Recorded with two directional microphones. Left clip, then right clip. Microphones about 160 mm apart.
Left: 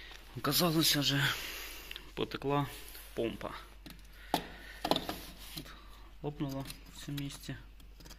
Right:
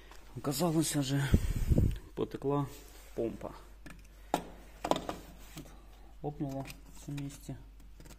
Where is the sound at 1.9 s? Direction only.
25° right (ahead or behind).